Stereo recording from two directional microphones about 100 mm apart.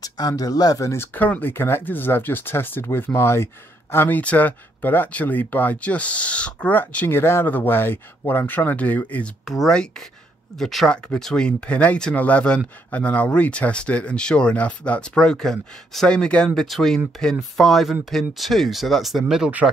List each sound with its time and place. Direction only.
0.0 s speech: 40° left (ahead or behind); by 9.3 s 15° left (ahead or behind)
9.4 s speech: 5° left (ahead or behind)